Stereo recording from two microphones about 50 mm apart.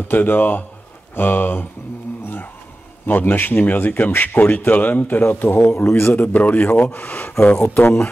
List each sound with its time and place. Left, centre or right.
0.1 s speech: left
3.1 s speech: left
5.9 s a man's voice: left
6.1 s speech: left
7.5 s speech: left